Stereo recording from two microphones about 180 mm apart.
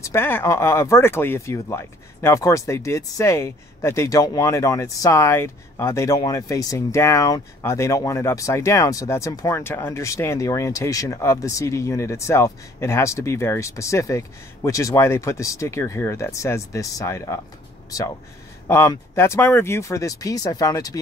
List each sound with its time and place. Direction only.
0.0 s speech: 10° left (ahead or behind)
18.7 s speech: 15° left (ahead or behind)